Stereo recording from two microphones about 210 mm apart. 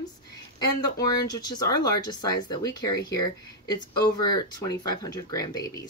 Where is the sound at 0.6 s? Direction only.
20° left (ahead or behind).